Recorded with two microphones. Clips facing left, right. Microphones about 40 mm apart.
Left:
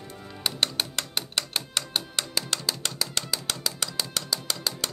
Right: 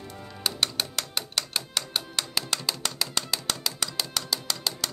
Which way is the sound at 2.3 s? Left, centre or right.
Centre.